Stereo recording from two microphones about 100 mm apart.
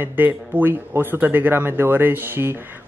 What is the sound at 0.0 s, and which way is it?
Speech, 20° right (ahead or behind).